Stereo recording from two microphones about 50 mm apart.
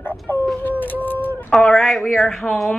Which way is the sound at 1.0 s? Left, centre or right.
Left.